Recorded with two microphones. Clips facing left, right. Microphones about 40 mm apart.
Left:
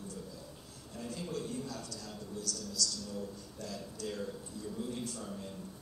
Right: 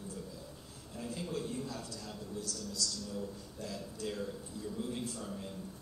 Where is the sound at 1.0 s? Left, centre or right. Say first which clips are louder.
Right 1 dB; right.